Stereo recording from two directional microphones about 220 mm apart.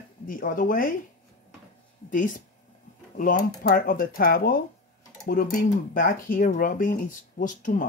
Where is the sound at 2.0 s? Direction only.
35° left (ahead or behind).